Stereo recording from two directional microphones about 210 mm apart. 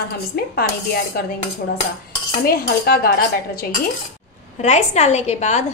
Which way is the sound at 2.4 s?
45° left (ahead or behind).